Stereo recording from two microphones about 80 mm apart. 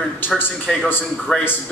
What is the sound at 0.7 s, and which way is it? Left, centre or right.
Speech, centre.